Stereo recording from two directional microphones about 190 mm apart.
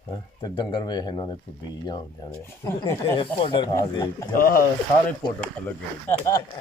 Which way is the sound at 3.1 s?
25° left (ahead or behind).